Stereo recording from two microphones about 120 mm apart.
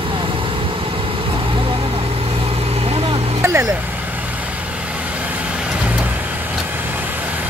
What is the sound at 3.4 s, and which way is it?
Vehicle, 20° right (ahead or behind).